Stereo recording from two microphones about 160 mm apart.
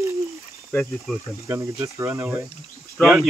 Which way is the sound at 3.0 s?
Centre (ahead or behind).